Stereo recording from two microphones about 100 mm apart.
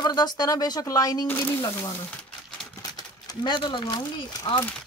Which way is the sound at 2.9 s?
45° left (ahead or behind).